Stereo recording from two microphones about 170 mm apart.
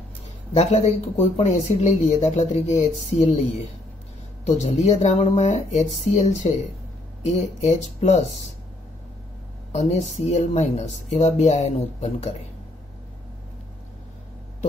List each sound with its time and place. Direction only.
0.6 s speech: 40° left (ahead or behind)
4.5 s speech: 40° left (ahead or behind)
9.7 s speech: 40° left (ahead or behind)